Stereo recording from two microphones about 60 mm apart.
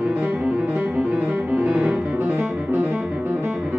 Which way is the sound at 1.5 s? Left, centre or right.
Right.